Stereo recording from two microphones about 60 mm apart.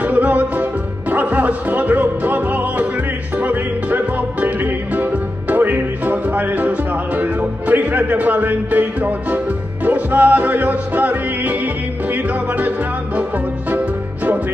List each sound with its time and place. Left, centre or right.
0.0 s music: right
5.5 s music: right
13.7 s music: right